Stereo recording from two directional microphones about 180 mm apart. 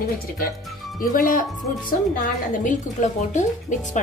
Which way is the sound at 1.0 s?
50° left (ahead or behind).